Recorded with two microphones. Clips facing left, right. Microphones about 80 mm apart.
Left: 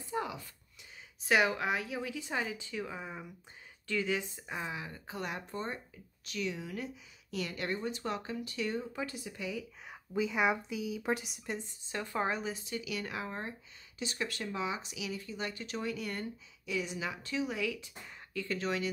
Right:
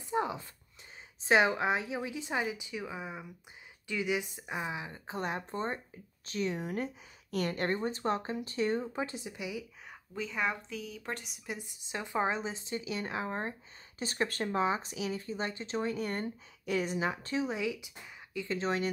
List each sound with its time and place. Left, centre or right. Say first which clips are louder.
0.0 s a sound: right 4 dB; right
1.2 s a woman's voice: right 3 dB; right
9.8 s a woman's voice: left 6 dB; centre
11.2 s speech: left 2 dB; centre
11.7 s speech: right 6 dB; centre